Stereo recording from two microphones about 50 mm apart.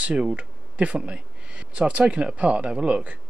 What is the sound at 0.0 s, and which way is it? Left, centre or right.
Speech, right.